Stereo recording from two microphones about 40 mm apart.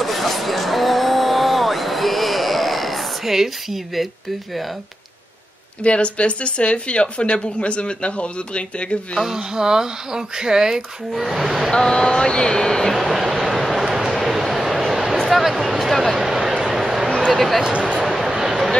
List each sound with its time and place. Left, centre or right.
0.0 s a sound: centre
5.9 s speech: left
9.2 s speech: centre
11.7 s speech: centre
12.9 s vehicle: centre
15.1 s a sound: centre
17.3 s speech: centre
18.0 s vehicle: centre